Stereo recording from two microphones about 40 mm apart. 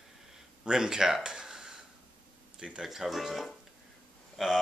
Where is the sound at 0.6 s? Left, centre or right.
Centre.